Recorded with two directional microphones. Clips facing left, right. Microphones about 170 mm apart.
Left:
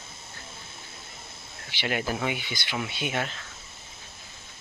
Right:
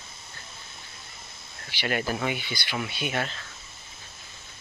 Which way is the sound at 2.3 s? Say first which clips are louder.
Even; 20° left (ahead or behind).